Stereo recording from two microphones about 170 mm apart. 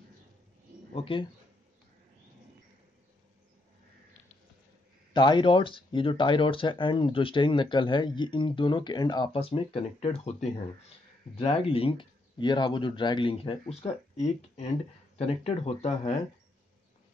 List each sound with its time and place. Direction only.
0.9 s speech: 30° left (ahead or behind)
5.1 s speech: 25° left (ahead or behind)